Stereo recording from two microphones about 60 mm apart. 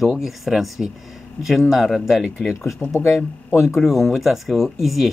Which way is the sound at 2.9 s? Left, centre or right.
Left.